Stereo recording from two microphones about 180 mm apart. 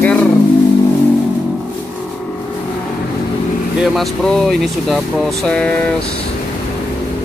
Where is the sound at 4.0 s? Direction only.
Centre (ahead or behind).